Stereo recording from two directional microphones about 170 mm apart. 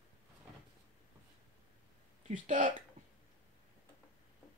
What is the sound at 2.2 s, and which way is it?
Speech, 50° right (ahead or behind).